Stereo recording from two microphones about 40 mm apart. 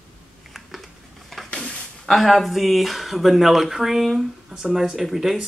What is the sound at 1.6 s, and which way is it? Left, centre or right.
Speech, centre.